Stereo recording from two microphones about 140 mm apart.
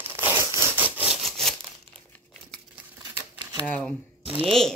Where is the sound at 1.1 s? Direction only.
Centre (ahead or behind).